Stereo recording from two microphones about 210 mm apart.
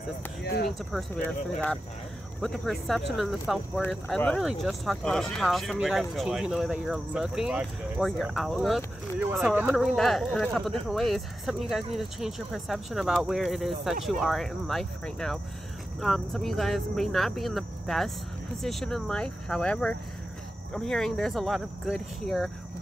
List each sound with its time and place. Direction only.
0.4 s speech: 50° left (ahead or behind)
0.7 s speech: centre (ahead or behind)
2.4 s speech: centre (ahead or behind)